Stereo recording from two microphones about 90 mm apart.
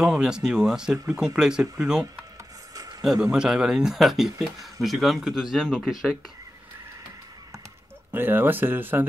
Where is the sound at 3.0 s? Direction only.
5° right (ahead or behind).